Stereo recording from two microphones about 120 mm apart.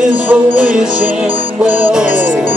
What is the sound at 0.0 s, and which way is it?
Music, 10° right (ahead or behind).